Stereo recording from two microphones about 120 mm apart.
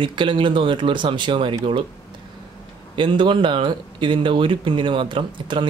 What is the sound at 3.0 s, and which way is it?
Speech, 45° right (ahead or behind).